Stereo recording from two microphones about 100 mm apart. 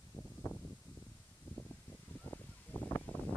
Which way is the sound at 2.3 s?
20° left (ahead or behind).